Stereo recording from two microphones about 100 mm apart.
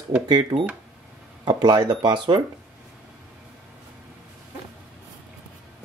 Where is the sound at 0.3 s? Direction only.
45° right (ahead or behind).